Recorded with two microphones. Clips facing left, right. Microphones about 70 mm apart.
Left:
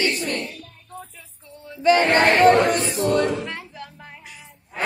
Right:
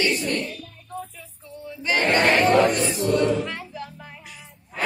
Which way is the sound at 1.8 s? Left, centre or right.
Left.